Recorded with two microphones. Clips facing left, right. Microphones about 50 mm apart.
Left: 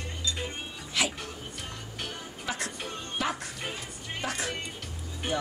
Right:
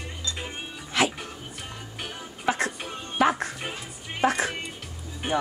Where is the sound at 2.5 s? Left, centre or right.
Right.